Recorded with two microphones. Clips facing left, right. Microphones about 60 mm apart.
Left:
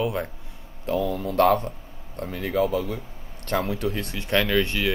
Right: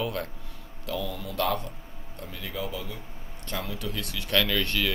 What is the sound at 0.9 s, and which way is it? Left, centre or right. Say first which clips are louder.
Speech: left 8 dB; left.